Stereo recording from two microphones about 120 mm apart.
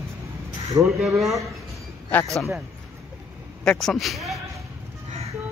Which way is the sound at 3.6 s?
Centre (ahead or behind).